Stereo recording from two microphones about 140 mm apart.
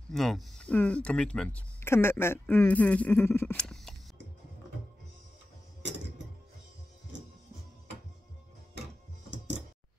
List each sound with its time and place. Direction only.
0.1 s speech: centre (ahead or behind)
1.8 s speech: 20° left (ahead or behind)
3.5 s a sound: 5° left (ahead or behind)